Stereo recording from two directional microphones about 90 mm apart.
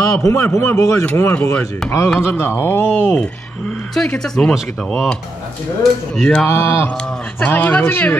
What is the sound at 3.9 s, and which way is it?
Speech, 5° left (ahead or behind).